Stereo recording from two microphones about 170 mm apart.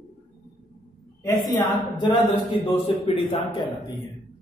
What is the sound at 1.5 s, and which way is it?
A man's voice, 30° left (ahead or behind).